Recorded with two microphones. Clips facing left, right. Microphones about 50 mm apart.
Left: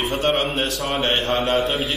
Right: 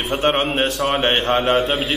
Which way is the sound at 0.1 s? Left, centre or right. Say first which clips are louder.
Right 4 dB; right.